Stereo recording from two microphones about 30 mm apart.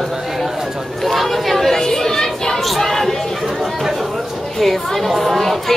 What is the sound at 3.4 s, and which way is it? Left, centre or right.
Chatter, centre.